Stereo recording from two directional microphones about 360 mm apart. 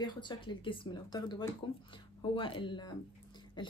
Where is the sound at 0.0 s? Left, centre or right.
Centre.